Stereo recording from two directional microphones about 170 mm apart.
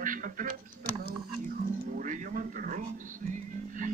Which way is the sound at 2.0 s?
50° right (ahead or behind).